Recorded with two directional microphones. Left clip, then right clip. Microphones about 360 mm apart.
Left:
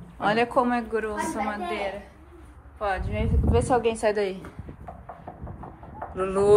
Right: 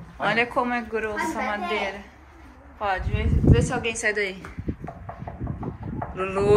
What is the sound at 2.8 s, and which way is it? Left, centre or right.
A woman's voice, centre.